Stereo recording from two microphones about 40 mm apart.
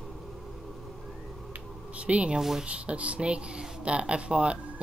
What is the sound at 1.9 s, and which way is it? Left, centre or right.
Speech, right.